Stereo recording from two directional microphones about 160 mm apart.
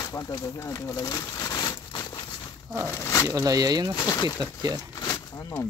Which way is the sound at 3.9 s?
20° left (ahead or behind).